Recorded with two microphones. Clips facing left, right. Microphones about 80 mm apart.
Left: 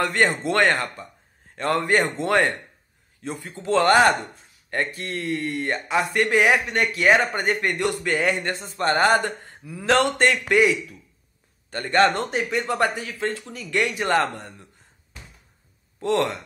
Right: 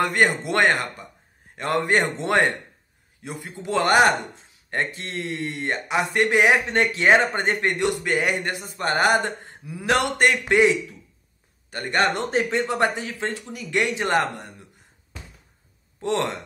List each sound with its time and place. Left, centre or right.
0.0 s speech: centre
12.3 s speech: right
16.0 s speech: right